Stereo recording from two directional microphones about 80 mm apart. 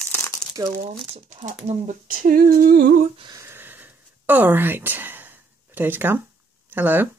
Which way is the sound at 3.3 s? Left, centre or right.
Right.